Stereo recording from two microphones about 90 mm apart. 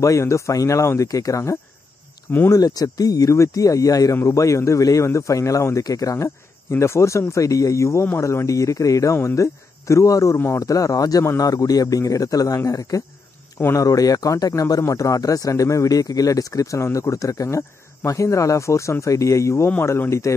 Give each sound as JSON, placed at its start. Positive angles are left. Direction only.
{"t": 0.0, "sound": "speech", "side_deg": 35}
{"t": 13.6, "sound": "speech", "side_deg": 25}
{"t": 13.8, "sound": "speech", "side_deg": 40}